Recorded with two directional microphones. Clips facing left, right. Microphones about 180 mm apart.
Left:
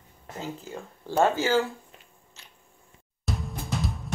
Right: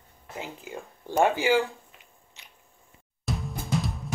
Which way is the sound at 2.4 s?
15° right (ahead or behind).